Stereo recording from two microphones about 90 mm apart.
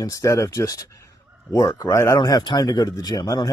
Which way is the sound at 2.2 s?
50° left (ahead or behind).